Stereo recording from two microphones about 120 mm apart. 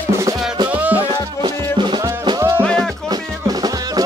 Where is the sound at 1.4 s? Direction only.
45° right (ahead or behind).